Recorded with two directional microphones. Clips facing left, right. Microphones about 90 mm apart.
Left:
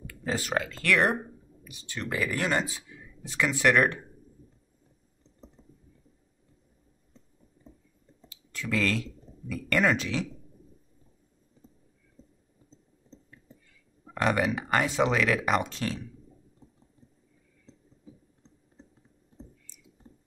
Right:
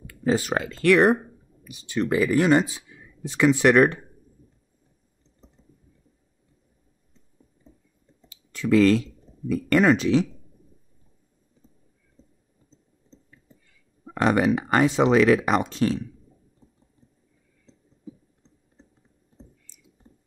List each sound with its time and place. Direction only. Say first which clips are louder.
0.0 s speech: right 9 dB; 25° right (ahead or behind)
8.3 s a sound: right 11 dB; 25° right (ahead or behind)
9.5 s speech: right 7 dB; 25° right (ahead or behind)
14.1 s speech: right 6 dB; 25° right (ahead or behind)